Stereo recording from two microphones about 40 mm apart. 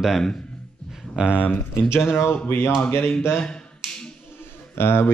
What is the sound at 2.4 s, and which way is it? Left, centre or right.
Speech, left.